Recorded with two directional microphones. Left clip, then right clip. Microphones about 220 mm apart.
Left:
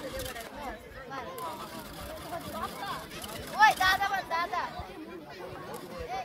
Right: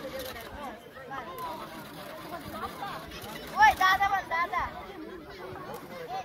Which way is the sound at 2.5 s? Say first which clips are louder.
Right 1 dB; 50° left (ahead or behind).